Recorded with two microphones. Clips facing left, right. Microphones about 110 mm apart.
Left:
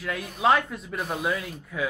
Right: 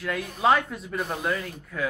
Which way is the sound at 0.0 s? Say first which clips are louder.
Even; centre (ahead or behind).